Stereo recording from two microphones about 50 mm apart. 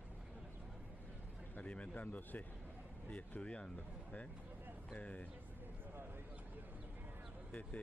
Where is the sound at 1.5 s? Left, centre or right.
Left.